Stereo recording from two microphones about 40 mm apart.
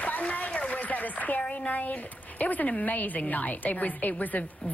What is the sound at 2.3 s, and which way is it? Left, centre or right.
A woman's voice, left.